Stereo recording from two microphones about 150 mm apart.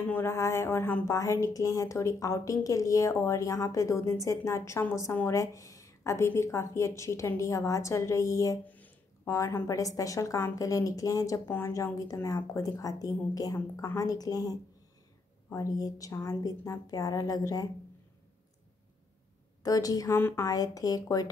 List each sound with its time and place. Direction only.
0.0 s speech: 15° left (ahead or behind)
19.6 s speech: 25° left (ahead or behind)